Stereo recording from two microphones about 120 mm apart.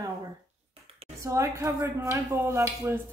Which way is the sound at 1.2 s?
25° right (ahead or behind).